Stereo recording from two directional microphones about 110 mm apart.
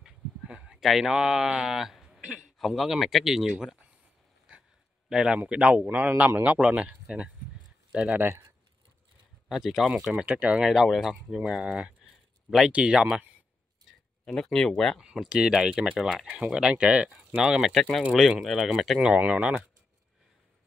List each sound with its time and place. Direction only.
0.0 s speech: 5° right (ahead or behind)
4.5 s a sound: 10° right (ahead or behind)
5.1 s speech: 5° right (ahead or behind)
9.5 s speech: centre (ahead or behind)
14.2 s speech: 5° left (ahead or behind)
15.0 s speech: 5° right (ahead or behind)